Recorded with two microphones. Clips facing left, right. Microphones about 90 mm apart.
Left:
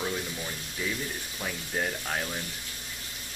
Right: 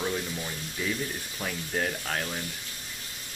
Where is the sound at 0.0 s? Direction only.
Centre (ahead or behind).